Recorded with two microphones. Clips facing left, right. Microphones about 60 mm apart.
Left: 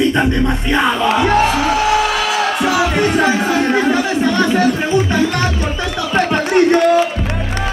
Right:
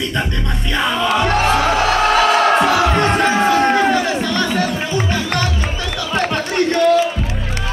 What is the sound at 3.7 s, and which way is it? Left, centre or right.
Speech, left.